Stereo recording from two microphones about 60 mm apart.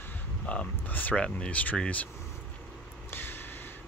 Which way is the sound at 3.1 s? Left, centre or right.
Left.